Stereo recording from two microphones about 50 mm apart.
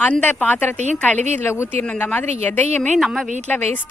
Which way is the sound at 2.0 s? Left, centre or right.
Left.